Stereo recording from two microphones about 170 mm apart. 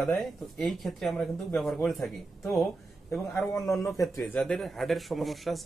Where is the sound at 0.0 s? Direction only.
Centre (ahead or behind).